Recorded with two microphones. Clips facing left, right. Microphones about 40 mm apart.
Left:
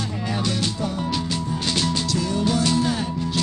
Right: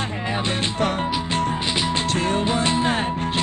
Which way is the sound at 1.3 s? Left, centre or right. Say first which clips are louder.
Right 5 dB; right.